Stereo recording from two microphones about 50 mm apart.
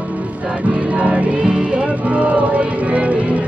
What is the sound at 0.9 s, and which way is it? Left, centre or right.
Music, right.